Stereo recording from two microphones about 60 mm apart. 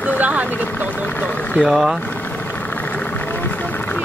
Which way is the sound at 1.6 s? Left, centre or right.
Centre.